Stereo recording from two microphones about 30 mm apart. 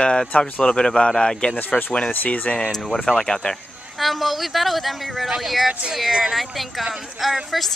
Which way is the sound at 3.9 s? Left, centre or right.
Centre.